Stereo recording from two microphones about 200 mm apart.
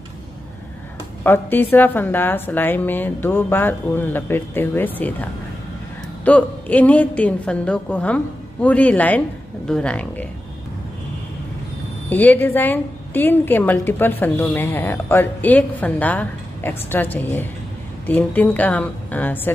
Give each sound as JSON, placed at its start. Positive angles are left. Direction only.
{"t": 1.2, "sound": "a woman's voice", "side_deg": 10}
{"t": 12.1, "sound": "a woman's voice", "side_deg": 10}